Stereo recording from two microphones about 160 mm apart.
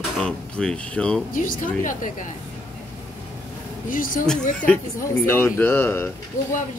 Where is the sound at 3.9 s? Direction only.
60° left (ahead or behind).